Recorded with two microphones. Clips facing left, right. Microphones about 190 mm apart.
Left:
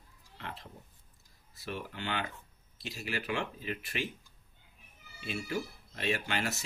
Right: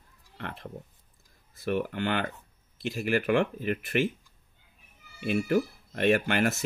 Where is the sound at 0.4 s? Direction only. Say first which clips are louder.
Right 6 dB; 55° right (ahead or behind).